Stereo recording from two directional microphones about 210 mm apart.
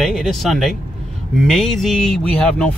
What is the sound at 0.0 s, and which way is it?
Speech, centre (ahead or behind).